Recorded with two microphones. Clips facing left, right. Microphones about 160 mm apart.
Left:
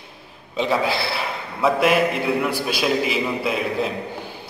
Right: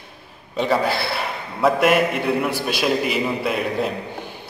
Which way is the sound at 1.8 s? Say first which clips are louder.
Right 1 dB; centre (ahead or behind).